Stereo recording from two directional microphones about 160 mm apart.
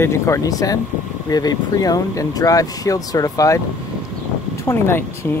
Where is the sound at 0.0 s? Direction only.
20° left (ahead or behind).